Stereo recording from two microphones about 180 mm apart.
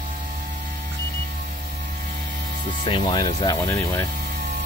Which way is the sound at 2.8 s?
30° left (ahead or behind).